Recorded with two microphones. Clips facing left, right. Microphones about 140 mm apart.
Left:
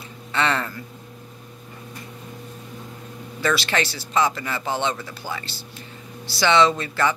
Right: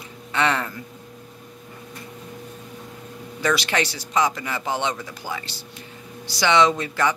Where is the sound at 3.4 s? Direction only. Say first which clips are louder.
Even; 15° right (ahead or behind).